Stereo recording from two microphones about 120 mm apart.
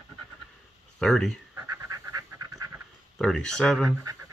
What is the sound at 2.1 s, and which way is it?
Pant, 25° right (ahead or behind).